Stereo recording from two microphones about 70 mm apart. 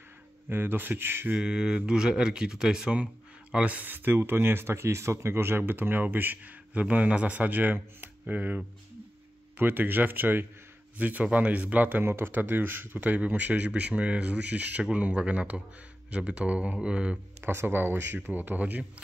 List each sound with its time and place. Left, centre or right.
0.5 s speech: right
1.4 s speech: centre
17.4 s speech: right